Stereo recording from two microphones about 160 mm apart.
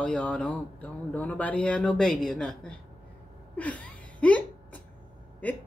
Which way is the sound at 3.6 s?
10° left (ahead or behind).